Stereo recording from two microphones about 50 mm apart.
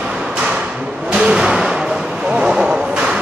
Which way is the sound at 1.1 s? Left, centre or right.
Centre.